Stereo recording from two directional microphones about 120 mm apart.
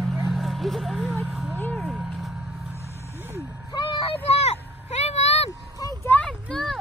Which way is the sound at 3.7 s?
45° left (ahead or behind).